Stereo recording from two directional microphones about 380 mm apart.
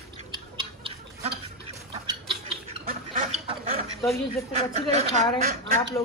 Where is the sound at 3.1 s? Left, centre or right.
Centre.